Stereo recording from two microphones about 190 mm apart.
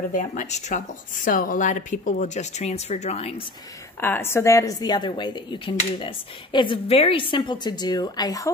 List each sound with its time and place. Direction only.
0.1 s speech: 45° left (ahead or behind)
4.0 s speech: 10° left (ahead or behind)